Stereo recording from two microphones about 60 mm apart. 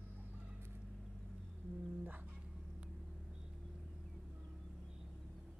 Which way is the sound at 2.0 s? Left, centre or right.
Right.